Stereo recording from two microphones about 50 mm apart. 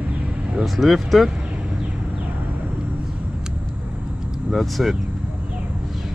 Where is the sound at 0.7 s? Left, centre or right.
Centre.